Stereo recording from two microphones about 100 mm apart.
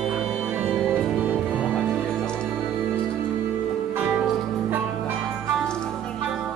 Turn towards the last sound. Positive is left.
turn(degrees=-15)  # may be behind; listen again after turning